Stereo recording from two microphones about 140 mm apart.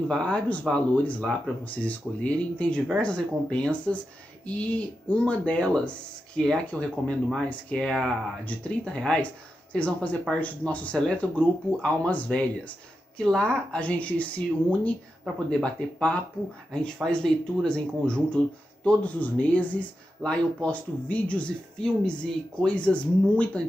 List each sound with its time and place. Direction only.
0.1 s speech: 5° left (ahead or behind)